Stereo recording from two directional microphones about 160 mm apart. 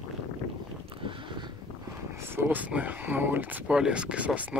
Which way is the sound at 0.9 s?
35° right (ahead or behind).